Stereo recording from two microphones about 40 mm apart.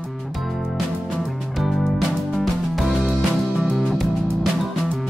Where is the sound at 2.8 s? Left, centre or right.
Centre.